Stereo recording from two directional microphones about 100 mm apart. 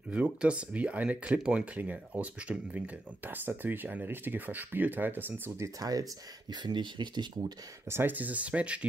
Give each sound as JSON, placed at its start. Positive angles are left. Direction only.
{"t": 0.1, "sound": "speech", "side_deg": -10}
{"t": 5.8, "sound": "speech", "side_deg": -35}
{"t": 6.5, "sound": "speech", "side_deg": -50}
{"t": 7.9, "sound": "speech", "side_deg": -20}